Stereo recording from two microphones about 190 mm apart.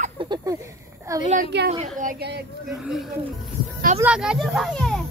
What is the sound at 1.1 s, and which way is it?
Speech, 20° right (ahead or behind).